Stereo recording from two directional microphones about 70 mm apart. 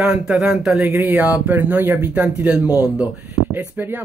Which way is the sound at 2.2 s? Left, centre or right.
Centre.